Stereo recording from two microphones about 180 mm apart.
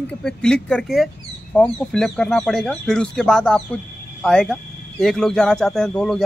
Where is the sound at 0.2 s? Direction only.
5° left (ahead or behind).